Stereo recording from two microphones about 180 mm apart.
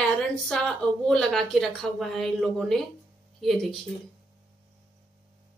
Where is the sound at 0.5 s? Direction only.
5° left (ahead or behind).